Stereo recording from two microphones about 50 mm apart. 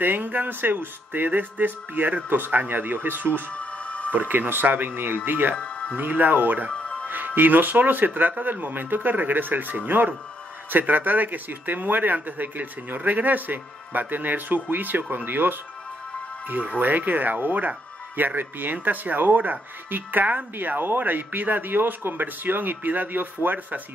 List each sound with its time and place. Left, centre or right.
0.0 s speech: right
3.5 s music: left
4.1 s speech: right
5.6 s music: left
5.9 s speech: right
16.4 s speech: right